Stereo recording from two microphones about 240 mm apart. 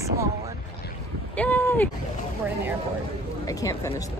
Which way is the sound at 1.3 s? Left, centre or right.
Centre.